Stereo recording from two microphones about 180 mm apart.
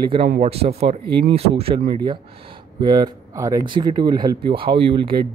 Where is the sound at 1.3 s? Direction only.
30° right (ahead or behind).